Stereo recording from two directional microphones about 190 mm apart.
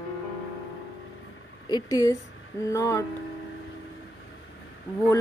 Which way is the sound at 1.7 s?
20° left (ahead or behind).